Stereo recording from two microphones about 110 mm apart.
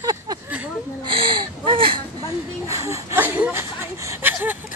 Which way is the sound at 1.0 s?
50° right (ahead or behind).